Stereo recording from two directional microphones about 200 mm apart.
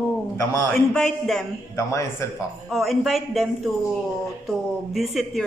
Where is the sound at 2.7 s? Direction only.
Centre (ahead or behind).